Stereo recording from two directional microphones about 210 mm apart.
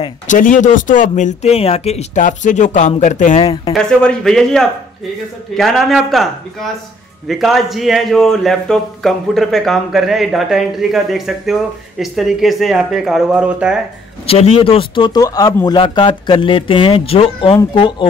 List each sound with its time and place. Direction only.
0.0 s speech: 40° left (ahead or behind)
3.7 s a man's voice: 5° left (ahead or behind)
14.2 s a man's voice: 30° left (ahead or behind)